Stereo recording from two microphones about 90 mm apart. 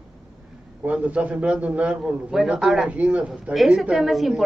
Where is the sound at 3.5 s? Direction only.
Centre (ahead or behind).